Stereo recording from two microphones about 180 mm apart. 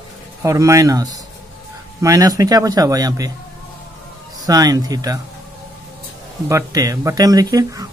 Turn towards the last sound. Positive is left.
turn(degrees=-20)  # may be behind; listen again after turning